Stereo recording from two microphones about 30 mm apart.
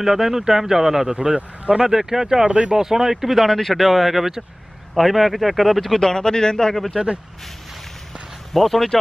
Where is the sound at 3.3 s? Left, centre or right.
Centre.